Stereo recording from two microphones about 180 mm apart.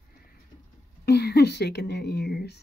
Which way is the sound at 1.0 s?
65° left (ahead or behind).